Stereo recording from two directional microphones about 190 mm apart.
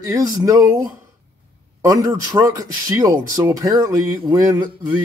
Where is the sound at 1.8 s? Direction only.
20° right (ahead or behind).